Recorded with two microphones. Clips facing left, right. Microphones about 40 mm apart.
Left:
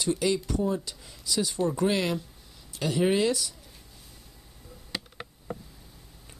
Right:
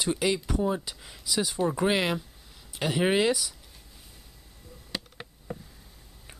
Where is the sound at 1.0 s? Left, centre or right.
Centre.